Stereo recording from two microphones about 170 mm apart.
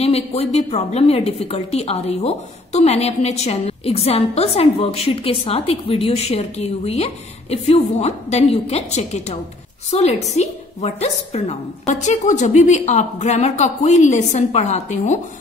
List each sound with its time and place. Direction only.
0.0 s a woman's voice: 35° left (ahead or behind)